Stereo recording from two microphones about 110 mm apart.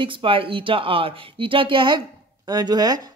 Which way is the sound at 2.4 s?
35° right (ahead or behind).